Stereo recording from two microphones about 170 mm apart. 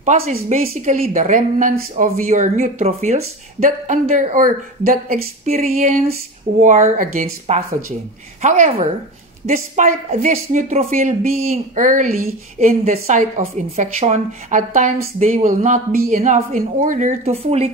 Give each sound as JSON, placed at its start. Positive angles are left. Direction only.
{"t": 0.0, "sound": "a woman's voice", "side_deg": -45}